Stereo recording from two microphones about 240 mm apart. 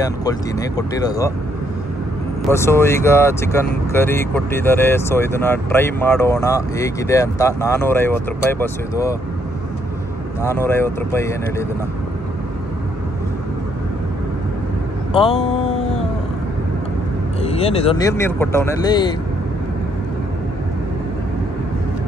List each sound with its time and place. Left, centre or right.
0.0 s speech: centre
2.5 s speech: centre
10.4 s speech: centre
17.4 s speech: left